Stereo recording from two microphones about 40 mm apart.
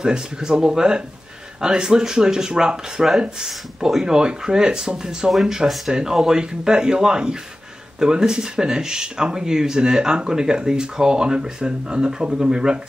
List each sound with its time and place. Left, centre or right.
0.0 s speech: right